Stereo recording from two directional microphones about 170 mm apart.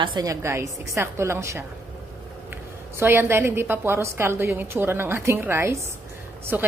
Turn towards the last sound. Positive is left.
turn(degrees=-10)  # may be behind; listen again after turning